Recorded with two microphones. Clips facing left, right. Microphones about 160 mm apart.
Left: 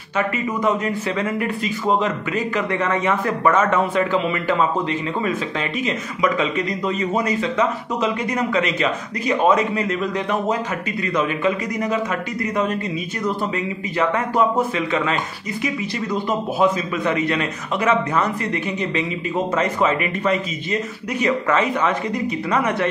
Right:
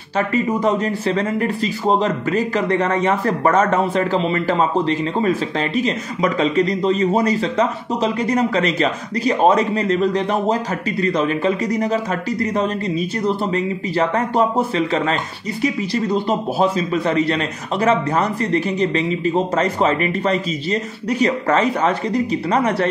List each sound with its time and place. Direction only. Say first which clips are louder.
0.3 s a man's voice: right 5 dB; 35° right (ahead or behind)